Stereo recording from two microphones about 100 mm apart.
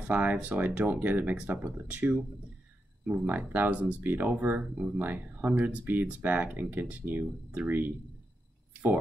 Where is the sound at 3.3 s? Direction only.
20° right (ahead or behind).